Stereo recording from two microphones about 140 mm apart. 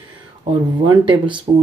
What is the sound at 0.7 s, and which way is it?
Speech, 35° right (ahead or behind).